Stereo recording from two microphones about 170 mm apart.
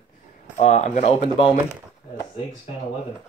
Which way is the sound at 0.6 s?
40° left (ahead or behind).